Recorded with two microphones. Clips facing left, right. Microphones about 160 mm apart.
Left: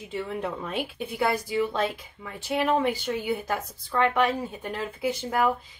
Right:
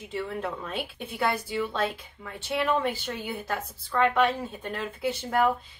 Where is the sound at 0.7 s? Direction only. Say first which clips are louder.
Left 3 dB; 10° left (ahead or behind).